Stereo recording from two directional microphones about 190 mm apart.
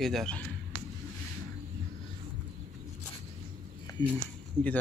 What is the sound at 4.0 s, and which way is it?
Speech, 20° left (ahead or behind).